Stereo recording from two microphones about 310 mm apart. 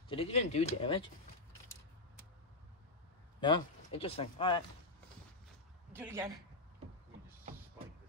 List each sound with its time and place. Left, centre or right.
0.1 s speech: centre
3.3 s speech: centre
5.9 s a man's voice: centre